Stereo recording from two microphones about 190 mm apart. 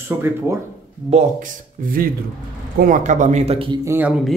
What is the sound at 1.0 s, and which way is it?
Speech, 40° right (ahead or behind).